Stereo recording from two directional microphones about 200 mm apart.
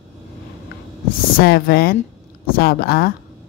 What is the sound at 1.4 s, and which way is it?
Speech, 50° left (ahead or behind).